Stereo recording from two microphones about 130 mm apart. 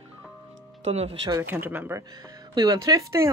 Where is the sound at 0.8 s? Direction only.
55° right (ahead or behind).